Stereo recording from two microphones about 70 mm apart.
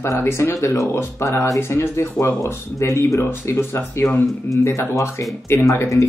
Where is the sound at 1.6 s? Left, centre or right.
Left.